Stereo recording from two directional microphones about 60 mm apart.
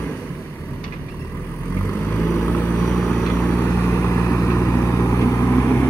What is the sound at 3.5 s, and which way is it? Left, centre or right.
Vehicle, left.